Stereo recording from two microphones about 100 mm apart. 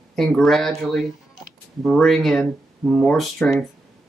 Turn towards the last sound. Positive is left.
turn(degrees=5)  # may be behind; listen again after turning